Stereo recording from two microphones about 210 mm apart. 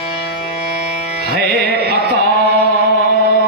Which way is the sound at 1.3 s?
50° right (ahead or behind).